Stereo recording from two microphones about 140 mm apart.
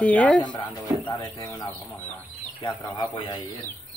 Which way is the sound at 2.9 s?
35° left (ahead or behind).